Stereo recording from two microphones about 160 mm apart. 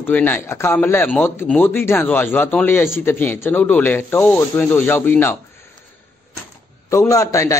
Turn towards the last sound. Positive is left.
turn(degrees=20)  # may be behind; listen again after turning